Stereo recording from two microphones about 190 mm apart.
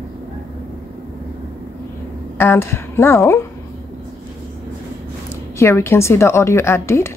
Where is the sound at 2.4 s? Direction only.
15° left (ahead or behind).